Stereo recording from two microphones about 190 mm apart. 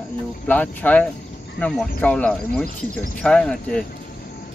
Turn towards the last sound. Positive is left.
turn(degrees=5)  # may be behind; listen again after turning